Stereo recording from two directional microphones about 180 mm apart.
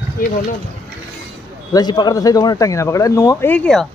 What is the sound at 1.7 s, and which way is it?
Speech, 25° left (ahead or behind).